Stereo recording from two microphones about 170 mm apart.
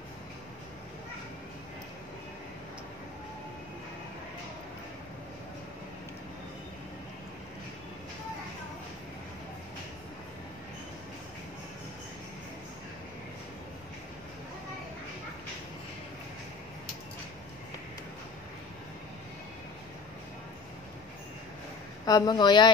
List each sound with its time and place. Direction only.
22.0 s speech: 25° left (ahead or behind)